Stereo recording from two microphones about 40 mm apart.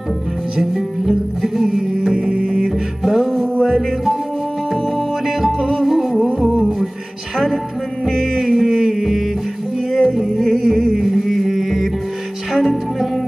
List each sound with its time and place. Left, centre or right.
0.6 s music: centre
2.0 s music: centre
2.6 s music: centre
7.3 s music: centre
8.5 s a sound: centre
9.9 s music: centre